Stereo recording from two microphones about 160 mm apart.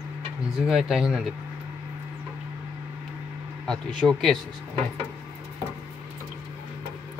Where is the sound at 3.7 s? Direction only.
5° left (ahead or behind).